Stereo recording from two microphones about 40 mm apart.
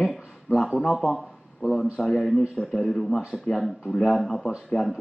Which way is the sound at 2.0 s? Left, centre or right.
Centre.